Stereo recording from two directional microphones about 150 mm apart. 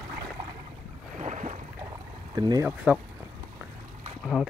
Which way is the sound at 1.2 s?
50° right (ahead or behind).